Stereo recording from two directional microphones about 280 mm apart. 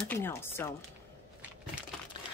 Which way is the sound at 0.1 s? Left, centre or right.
Centre.